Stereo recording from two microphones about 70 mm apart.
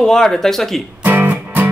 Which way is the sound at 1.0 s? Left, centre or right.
Right.